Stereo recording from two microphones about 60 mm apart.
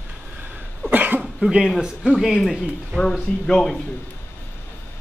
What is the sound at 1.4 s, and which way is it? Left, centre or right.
Speech, centre.